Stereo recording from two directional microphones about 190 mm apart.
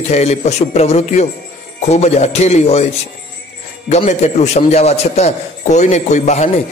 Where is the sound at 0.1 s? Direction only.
35° left (ahead or behind).